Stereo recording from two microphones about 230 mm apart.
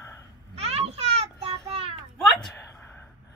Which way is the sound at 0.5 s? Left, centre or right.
Right.